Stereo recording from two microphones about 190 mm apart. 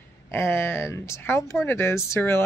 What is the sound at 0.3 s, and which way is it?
A woman's voice, 15° left (ahead or behind).